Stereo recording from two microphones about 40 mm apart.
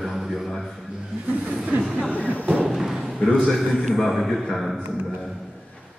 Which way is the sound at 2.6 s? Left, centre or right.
Centre.